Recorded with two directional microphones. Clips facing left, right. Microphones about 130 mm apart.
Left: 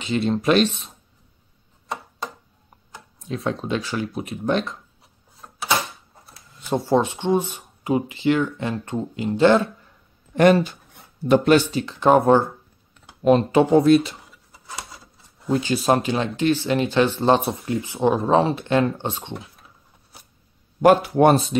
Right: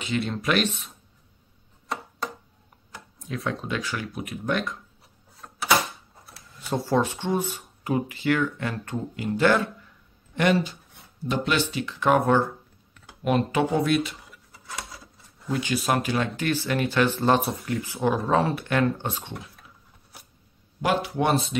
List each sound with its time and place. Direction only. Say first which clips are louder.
0.0 s speech: left 6 dB; 30° left (ahead or behind)
3.3 s speech: left 4 dB; 25° left (ahead or behind)
5.4 s a sound: left 1 dB; 10° left (ahead or behind)
6.2 s speech: left 3 dB; 25° left (ahead or behind)
10.3 s speech: left 7 dB; 45° left (ahead or behind)
11.7 s speech: left 5 dB; 35° left (ahead or behind)
13.0 s writing: left 7 dB; 30° left (ahead or behind)
14.7 s a sound: left 1 dB; centre (ahead or behind)
15.5 s speech: left 5 dB; 30° left (ahead or behind)
20.8 s speech: left 9 dB; 45° left (ahead or behind)